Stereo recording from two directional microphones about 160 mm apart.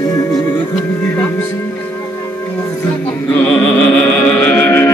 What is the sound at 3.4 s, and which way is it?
Music, 10° left (ahead or behind).